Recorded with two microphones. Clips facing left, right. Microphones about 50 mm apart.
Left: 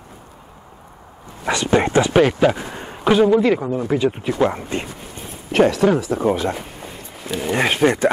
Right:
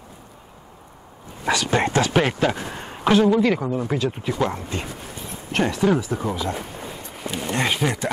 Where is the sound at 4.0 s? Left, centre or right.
Centre.